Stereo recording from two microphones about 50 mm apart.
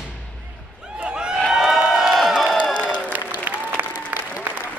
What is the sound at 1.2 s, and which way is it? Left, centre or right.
Crowd, centre.